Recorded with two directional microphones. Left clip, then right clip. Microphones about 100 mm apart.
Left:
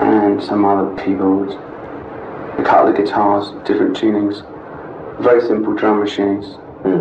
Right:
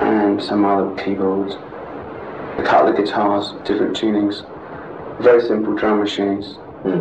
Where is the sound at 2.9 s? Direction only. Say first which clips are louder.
Left 3 dB; 40° right (ahead or behind).